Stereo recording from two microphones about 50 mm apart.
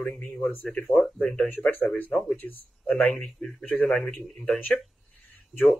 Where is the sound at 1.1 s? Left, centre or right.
Left.